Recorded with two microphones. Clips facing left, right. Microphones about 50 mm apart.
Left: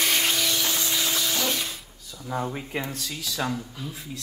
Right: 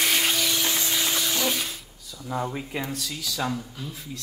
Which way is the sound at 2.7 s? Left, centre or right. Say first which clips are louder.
Even; left.